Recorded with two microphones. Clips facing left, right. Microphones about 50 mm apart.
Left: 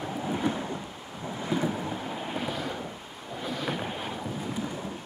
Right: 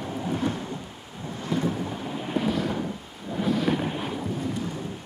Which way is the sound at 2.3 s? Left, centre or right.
Centre.